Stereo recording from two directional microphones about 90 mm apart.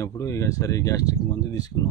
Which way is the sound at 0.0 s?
35° left (ahead or behind).